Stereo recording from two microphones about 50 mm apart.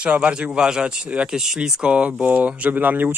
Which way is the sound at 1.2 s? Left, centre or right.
Centre.